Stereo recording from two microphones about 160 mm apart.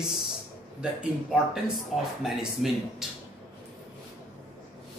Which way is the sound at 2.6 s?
Centre (ahead or behind).